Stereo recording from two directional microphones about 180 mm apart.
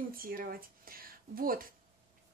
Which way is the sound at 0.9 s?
55° right (ahead or behind).